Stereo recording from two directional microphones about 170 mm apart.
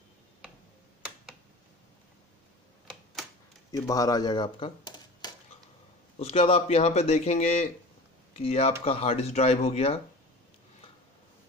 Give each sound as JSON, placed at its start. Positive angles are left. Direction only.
{"t": 3.7, "sound": "a man's voice", "side_deg": 20}